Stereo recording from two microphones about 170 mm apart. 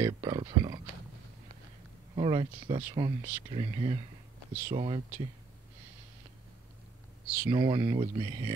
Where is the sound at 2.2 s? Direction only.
30° right (ahead or behind).